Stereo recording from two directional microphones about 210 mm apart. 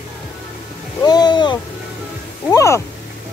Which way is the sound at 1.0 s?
20° left (ahead or behind).